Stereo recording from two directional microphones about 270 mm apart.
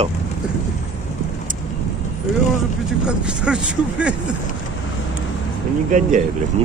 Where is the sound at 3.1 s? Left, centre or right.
Centre.